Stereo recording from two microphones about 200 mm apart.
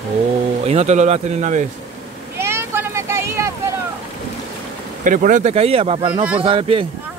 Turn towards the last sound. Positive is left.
turn(degrees=-25)  # may be behind; listen again after turning